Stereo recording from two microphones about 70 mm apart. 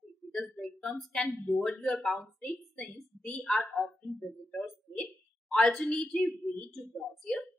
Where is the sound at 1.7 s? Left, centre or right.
Centre.